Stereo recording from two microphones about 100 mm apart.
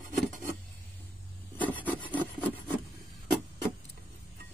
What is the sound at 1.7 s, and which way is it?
Rub, 15° left (ahead or behind).